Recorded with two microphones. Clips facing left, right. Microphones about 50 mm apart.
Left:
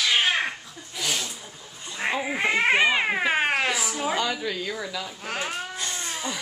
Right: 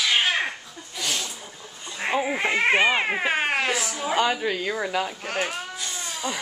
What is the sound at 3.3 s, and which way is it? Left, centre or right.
Cat, centre.